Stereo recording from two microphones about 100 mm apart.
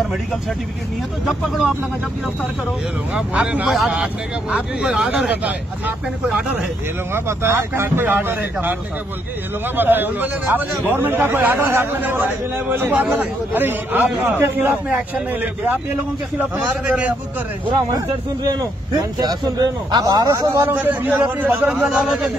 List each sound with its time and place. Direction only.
3.2 s a man's voice: 10° right (ahead or behind)
7.2 s a man's voice: 25° right (ahead or behind)
9.8 s a man's voice: 20° right (ahead or behind)
17.9 s speech: 40° right (ahead or behind)
20.7 s a man's voice: 15° right (ahead or behind)
21.8 s speech: 5° right (ahead or behind)